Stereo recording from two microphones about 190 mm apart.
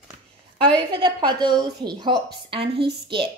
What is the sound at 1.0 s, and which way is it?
Speech, 25° right (ahead or behind).